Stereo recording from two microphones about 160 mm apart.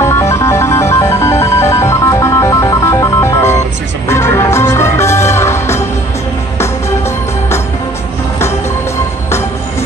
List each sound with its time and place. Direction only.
0.0 s music: 15° left (ahead or behind)